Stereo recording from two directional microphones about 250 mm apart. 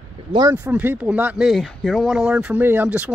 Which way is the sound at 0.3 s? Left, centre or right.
Centre.